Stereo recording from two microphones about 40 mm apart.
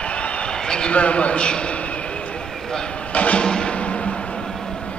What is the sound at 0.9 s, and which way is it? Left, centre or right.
Speech, left.